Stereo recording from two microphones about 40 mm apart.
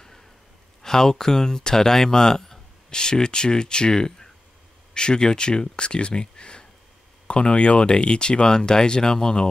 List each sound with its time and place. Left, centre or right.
0.8 s speech: centre